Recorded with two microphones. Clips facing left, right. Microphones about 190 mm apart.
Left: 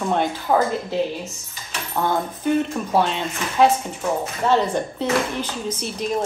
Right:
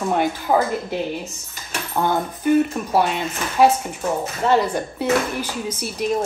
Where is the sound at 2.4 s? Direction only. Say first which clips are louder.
Right 5 dB; 5° right (ahead or behind).